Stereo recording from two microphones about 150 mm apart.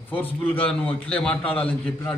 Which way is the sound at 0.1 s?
10° left (ahead or behind).